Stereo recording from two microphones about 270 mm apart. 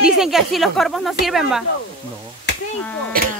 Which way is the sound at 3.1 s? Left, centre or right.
Right.